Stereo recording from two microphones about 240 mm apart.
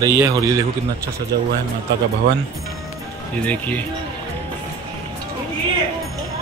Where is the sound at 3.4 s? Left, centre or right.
Centre.